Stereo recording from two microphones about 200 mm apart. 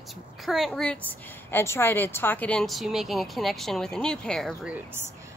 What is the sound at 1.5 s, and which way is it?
A woman's voice, 10° left (ahead or behind).